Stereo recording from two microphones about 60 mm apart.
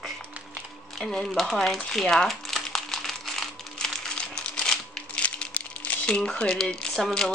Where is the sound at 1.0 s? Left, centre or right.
Centre.